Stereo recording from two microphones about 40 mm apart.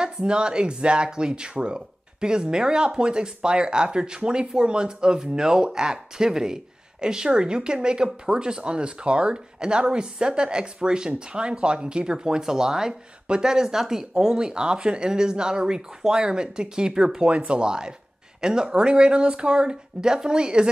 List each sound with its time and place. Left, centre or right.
0.0 s speech: right
17.3 s speech: right